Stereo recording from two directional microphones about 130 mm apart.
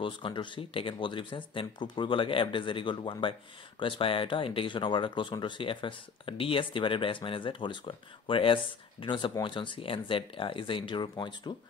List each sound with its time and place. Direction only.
0.0 s speech: 40° left (ahead or behind)